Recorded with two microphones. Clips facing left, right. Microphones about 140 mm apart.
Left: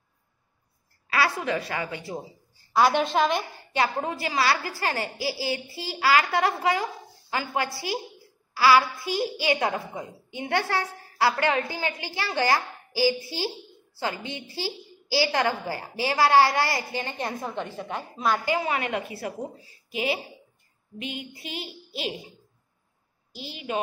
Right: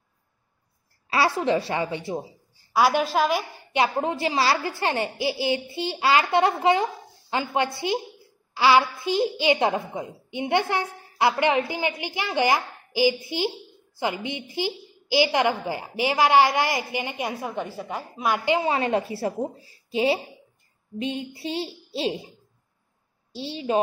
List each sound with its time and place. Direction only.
1.1 s a woman's voice: 30° right (ahead or behind)
2.7 s a woman's voice: 5° right (ahead or behind)
3.7 s a woman's voice: 20° right (ahead or behind)
18.4 s a woman's voice: 25° right (ahead or behind)
23.3 s speech: 30° right (ahead or behind)